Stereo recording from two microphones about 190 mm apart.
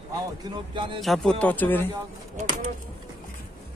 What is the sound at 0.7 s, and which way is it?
Speech, 25° right (ahead or behind).